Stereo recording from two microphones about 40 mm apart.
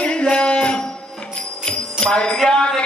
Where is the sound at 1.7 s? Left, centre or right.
Left.